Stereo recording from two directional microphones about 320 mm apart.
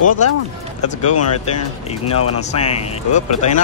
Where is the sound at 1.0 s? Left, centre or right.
Left.